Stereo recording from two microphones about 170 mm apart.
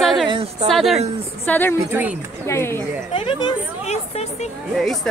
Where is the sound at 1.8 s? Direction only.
10° right (ahead or behind).